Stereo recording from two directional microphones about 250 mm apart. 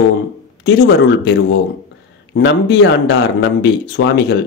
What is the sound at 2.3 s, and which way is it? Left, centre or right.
Speech, left.